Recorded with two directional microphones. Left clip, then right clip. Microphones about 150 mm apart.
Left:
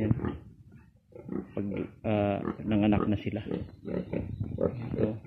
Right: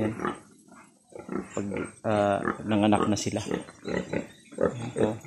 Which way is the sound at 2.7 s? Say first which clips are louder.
Right 4 dB; 20° right (ahead or behind).